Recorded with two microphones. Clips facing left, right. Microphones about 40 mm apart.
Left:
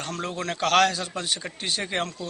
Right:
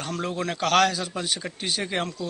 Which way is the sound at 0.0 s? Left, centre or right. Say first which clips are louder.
Right 2 dB; centre.